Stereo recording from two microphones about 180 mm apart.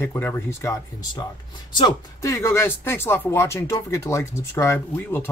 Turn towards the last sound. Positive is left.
turn(degrees=10)  # may be behind; listen again after turning